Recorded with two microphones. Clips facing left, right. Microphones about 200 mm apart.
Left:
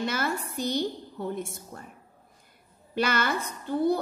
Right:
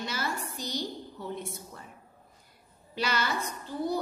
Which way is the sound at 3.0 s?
55° left (ahead or behind).